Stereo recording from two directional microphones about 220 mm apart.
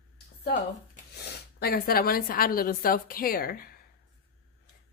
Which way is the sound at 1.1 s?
45° left (ahead or behind).